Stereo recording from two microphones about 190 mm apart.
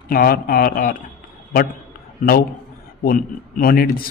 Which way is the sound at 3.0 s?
50° left (ahead or behind).